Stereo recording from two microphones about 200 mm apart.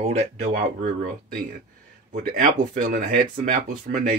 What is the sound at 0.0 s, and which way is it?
Speech, 35° right (ahead or behind).